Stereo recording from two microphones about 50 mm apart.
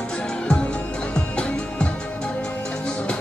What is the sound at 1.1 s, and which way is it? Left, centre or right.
Music, left.